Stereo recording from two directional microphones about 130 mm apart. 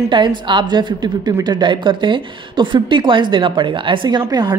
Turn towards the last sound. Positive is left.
turn(degrees=-35)  # may be behind; listen again after turning